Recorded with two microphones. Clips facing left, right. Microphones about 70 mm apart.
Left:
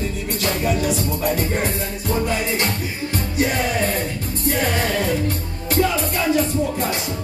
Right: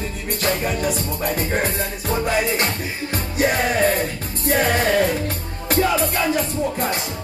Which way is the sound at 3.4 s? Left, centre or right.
Right.